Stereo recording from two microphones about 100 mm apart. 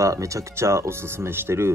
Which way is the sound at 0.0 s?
30° right (ahead or behind).